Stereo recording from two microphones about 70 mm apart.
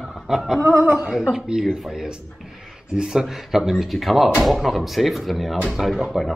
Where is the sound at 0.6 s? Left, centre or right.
Right.